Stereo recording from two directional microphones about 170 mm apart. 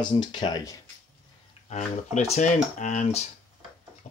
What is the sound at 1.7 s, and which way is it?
Speech, 40° left (ahead or behind).